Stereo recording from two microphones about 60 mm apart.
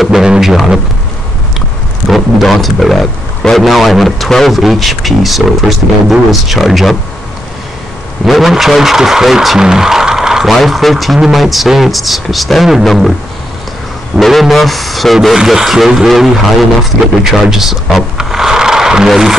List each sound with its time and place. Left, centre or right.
0.0 s speech: centre
2.0 s speech: centre
8.3 s vehicle: centre
10.5 s speech: centre
14.2 s speech: centre
17.2 s a sound: centre
19.0 s speech: centre